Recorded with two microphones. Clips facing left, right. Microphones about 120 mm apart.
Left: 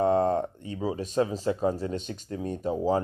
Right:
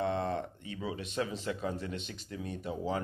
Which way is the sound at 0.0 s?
40° left (ahead or behind).